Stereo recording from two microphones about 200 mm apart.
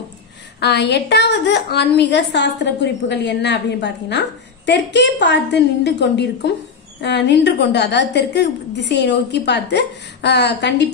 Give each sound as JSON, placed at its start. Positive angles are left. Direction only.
{"t": 0.6, "sound": "a woman's voice", "side_deg": 55}